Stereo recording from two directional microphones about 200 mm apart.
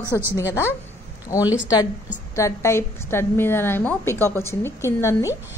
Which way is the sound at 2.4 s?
15° left (ahead or behind).